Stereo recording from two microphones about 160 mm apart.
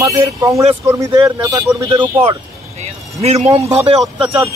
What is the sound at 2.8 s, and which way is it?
Speech, 40° right (ahead or behind).